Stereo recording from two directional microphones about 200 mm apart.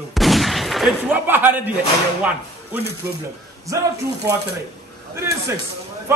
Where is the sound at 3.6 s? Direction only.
15° right (ahead or behind).